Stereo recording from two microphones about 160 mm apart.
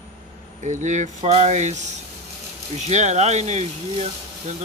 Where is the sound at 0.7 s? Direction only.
50° right (ahead or behind).